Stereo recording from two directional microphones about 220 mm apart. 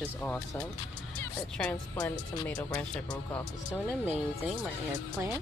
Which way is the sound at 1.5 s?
5° left (ahead or behind).